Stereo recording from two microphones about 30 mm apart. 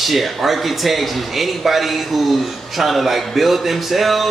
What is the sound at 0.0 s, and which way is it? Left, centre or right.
A man's voice, centre.